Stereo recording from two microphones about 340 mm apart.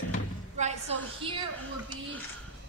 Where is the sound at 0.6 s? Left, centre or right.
Centre.